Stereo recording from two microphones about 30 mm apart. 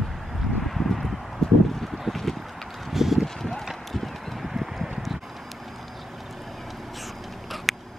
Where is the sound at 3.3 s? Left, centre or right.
Centre.